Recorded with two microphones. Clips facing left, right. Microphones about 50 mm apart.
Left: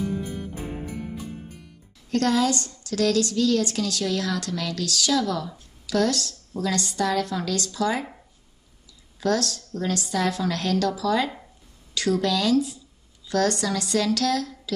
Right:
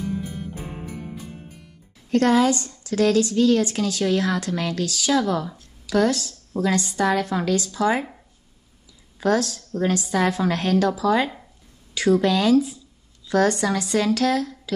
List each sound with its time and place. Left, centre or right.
0.0 s music: centre
2.0 s a woman's voice: right
9.2 s a woman's voice: right